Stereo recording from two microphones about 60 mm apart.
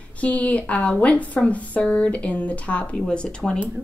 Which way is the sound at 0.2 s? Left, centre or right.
Left.